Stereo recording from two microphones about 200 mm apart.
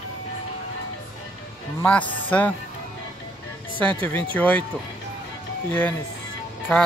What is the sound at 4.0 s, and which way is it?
Speech, 10° left (ahead or behind).